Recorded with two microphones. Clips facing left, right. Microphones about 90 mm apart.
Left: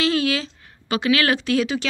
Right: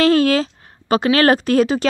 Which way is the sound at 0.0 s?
45° right (ahead or behind).